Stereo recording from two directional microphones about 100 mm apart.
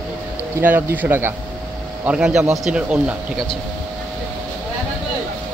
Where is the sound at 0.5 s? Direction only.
20° right (ahead or behind).